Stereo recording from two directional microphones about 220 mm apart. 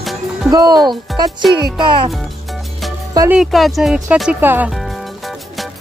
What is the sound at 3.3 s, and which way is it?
Speech, centre (ahead or behind).